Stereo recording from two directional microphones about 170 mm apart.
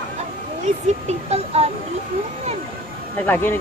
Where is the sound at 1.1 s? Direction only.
35° right (ahead or behind).